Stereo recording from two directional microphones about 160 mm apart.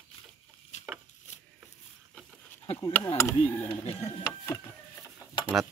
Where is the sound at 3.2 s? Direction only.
20° left (ahead or behind).